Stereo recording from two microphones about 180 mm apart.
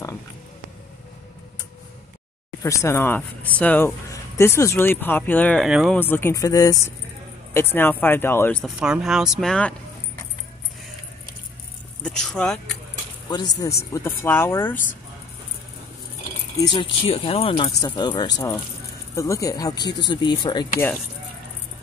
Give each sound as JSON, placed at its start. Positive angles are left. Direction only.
{"t": 2.6, "sound": "speech", "side_deg": 15}
{"t": 5.9, "sound": "speech", "side_deg": 10}
{"t": 8.7, "sound": "speech", "side_deg": -5}
{"t": 12.0, "sound": "speech", "side_deg": 5}
{"t": 13.3, "sound": "speech", "side_deg": 20}
{"t": 16.7, "sound": "speech", "side_deg": 30}